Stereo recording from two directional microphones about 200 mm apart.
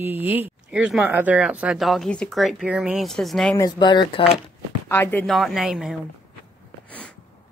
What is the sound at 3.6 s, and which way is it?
Speech, 20° left (ahead or behind).